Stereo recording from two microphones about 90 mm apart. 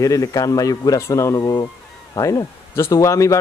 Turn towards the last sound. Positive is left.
turn(degrees=35)  # may be behind; listen again after turning